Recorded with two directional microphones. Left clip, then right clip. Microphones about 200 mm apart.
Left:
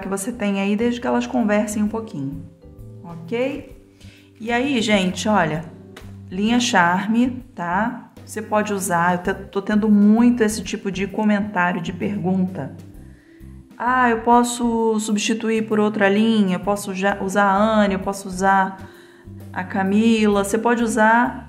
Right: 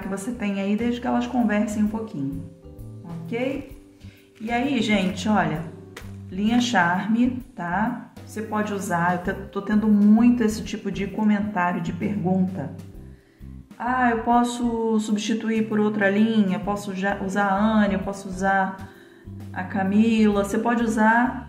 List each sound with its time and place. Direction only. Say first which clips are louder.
0.1 s speech: left 6 dB; 50° left (ahead or behind)
3.3 s speech: left 4 dB; 50° left (ahead or behind)
13.7 s speech: left 4 dB; 50° left (ahead or behind)